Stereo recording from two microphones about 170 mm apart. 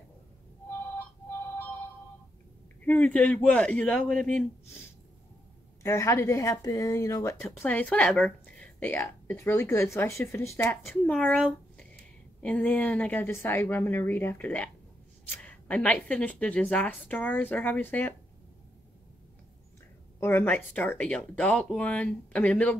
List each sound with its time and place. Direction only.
2.8 s speech: 10° left (ahead or behind)
20.2 s speech: 10° left (ahead or behind)